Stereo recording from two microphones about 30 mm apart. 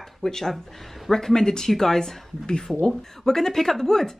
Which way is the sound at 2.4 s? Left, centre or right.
Left.